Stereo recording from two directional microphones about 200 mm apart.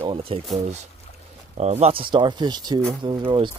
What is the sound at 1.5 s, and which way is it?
Speech, 30° right (ahead or behind).